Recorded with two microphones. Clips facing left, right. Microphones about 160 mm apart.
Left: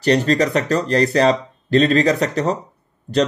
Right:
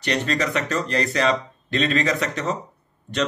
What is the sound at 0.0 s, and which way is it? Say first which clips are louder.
A man's voice: left 8 dB; 35° left (ahead or behind).